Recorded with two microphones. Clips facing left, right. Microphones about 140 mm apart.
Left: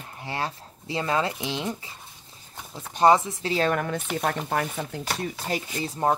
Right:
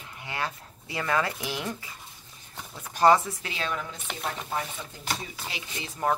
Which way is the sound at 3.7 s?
65° left (ahead or behind).